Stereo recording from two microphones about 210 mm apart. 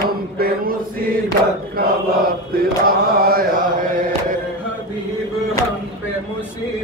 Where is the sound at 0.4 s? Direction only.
45° right (ahead or behind).